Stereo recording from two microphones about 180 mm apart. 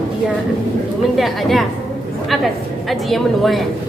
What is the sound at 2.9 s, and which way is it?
Speech, centre (ahead or behind).